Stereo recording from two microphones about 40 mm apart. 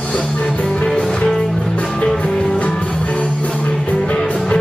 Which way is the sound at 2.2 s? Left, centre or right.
Left.